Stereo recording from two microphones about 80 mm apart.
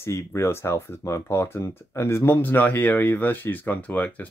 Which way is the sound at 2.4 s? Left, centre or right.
Left.